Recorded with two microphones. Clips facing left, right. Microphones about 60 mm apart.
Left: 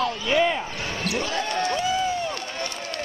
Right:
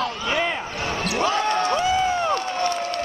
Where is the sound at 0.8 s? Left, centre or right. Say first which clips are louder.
Right 4 dB; right.